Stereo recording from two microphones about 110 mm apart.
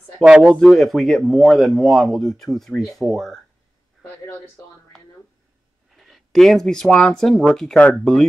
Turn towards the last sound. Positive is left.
turn(degrees=10)  # may be behind; listen again after turning